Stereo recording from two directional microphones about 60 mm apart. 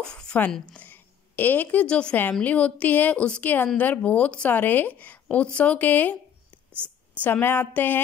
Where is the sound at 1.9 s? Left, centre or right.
Centre.